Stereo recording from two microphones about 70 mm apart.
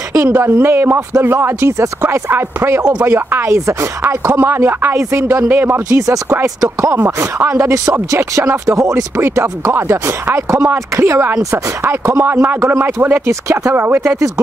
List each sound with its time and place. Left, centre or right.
0.2 s speech: right
5.9 s speech: right
9.2 s a man's voice: right